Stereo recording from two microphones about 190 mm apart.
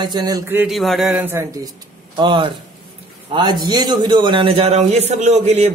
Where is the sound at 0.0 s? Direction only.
20° right (ahead or behind).